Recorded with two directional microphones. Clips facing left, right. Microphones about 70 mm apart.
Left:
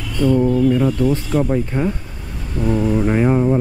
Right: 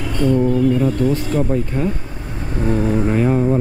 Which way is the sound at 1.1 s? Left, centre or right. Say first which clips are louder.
Left 1 dB; left.